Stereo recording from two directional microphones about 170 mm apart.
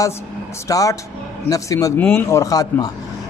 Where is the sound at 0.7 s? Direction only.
20° left (ahead or behind).